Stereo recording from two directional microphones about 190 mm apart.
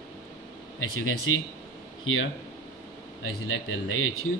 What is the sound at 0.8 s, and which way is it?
Speech, 90° left.